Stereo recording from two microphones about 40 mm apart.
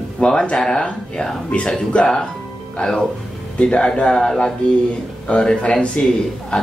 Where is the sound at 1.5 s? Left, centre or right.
Left.